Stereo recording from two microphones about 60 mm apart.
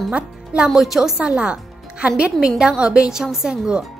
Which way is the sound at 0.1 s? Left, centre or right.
Right.